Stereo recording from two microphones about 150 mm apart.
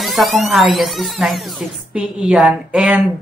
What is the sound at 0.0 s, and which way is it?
A woman's voice, centre (ahead or behind).